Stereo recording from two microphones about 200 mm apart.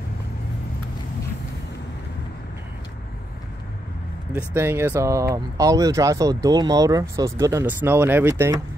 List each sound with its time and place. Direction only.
4.3 s speech: 10° right (ahead or behind)